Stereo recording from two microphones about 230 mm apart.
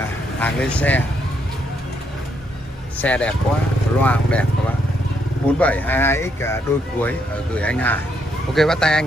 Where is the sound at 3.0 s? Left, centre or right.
Centre.